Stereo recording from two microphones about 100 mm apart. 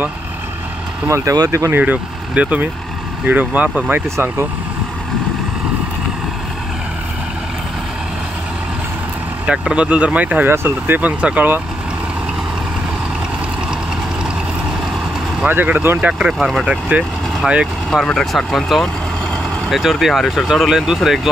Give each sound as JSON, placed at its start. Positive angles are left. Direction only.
{"t": 1.0, "sound": "speech", "side_deg": -30}
{"t": 1.8, "sound": "speech", "side_deg": -15}
{"t": 9.5, "sound": "speech", "side_deg": -10}
{"t": 15.4, "sound": "speech", "side_deg": -20}
{"t": 16.0, "sound": "speech", "side_deg": -10}
{"t": 17.8, "sound": "speech", "side_deg": 5}